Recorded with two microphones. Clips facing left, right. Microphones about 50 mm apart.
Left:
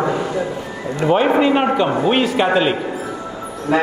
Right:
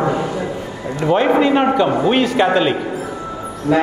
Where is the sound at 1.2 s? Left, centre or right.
Centre.